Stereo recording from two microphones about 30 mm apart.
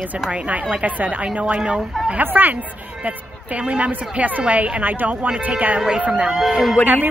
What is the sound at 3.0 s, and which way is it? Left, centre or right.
Speech, right.